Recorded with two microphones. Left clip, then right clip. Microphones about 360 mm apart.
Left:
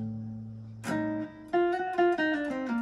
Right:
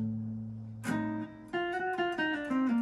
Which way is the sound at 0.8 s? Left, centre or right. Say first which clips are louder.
Left 4 dB; centre.